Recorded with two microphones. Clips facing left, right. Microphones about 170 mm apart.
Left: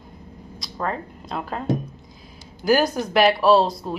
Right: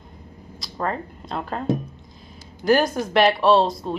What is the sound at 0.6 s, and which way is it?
Speech, centre (ahead or behind).